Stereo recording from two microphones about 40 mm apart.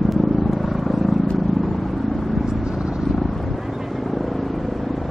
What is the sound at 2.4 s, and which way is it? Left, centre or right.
Vehicle, right.